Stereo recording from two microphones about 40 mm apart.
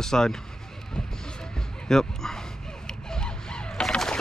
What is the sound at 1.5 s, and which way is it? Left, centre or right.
Dog, centre.